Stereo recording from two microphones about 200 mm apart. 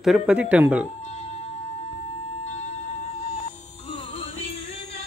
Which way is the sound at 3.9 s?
25° left (ahead or behind).